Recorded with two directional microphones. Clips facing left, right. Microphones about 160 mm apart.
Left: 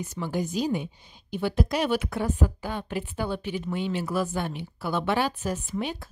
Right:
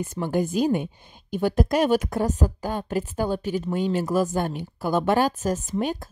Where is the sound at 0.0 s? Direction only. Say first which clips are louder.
Right 5 dB; 50° right (ahead or behind).